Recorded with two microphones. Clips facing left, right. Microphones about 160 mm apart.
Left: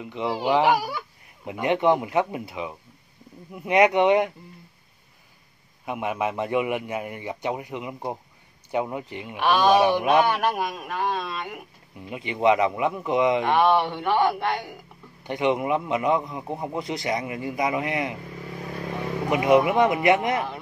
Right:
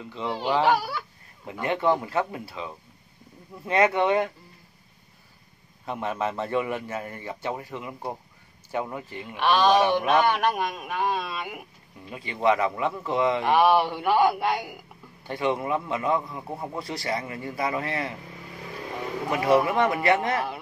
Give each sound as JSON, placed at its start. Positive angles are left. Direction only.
{"t": 0.0, "sound": "a man's voice", "side_deg": 15}
{"t": 5.9, "sound": "a man's voice", "side_deg": 15}
{"t": 12.0, "sound": "a man's voice", "side_deg": 20}
{"t": 13.5, "sound": "speech", "side_deg": -5}
{"t": 15.2, "sound": "a man's voice", "side_deg": 20}
{"t": 19.3, "sound": "a man's voice", "side_deg": 15}